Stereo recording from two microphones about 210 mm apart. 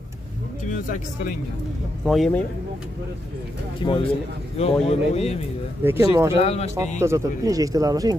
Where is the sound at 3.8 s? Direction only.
20° left (ahead or behind).